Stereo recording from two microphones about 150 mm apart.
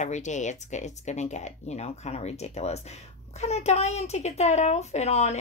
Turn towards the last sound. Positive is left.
turn(degrees=45)  # may be behind; listen again after turning